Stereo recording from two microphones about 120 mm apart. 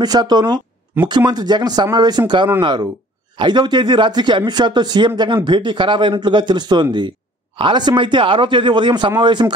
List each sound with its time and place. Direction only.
0.0 s speech: 35° right (ahead or behind)